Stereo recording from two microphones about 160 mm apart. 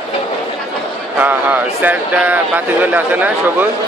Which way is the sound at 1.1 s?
10° right (ahead or behind).